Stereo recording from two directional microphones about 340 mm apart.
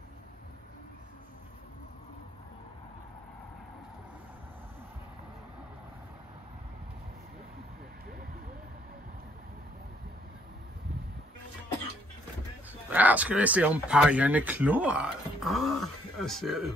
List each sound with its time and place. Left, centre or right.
12.9 s speech: centre